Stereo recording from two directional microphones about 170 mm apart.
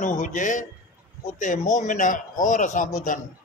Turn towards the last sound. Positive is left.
turn(degrees=50)  # may be behind; listen again after turning